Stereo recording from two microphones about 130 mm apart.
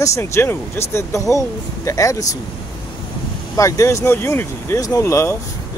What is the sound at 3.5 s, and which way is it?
Speech, 25° left (ahead or behind).